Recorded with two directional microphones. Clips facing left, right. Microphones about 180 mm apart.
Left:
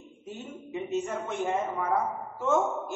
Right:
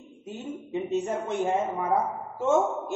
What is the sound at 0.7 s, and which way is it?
Speech, 25° right (ahead or behind).